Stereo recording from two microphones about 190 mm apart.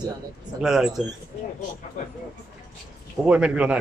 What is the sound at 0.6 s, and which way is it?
Speech, centre (ahead or behind).